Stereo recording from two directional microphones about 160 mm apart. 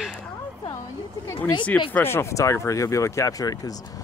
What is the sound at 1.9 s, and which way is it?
Speech, 15° left (ahead or behind).